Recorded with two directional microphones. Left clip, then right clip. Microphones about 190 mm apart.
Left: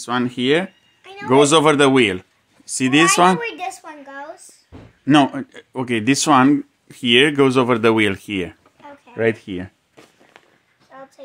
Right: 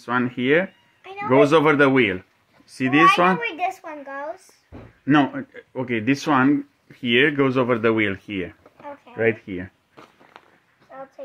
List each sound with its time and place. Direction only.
0.0 s speech: 40° left (ahead or behind)
3.1 s a child's voice: 35° left (ahead or behind)
3.8 s speech: 5° left (ahead or behind)
5.0 s speech: 55° left (ahead or behind)
9.1 s a child's voice: 40° left (ahead or behind)
10.9 s a sound: 20° left (ahead or behind)